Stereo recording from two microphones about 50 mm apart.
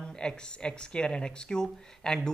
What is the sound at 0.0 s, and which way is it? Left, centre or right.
A man's voice, centre.